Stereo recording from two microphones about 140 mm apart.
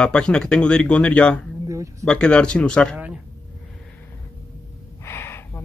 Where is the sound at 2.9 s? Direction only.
10° right (ahead or behind).